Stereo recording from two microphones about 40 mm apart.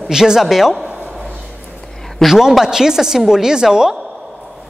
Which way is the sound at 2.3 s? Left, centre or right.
Centre.